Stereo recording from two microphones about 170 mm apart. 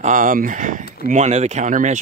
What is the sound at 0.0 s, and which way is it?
Speech, 50° right (ahead or behind).